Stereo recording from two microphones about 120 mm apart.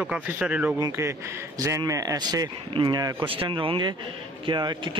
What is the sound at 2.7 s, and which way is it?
Speech, 45° right (ahead or behind).